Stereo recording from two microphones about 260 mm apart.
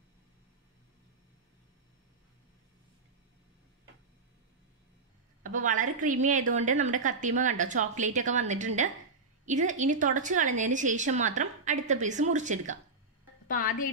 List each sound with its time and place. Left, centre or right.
5.4 s a woman's voice: right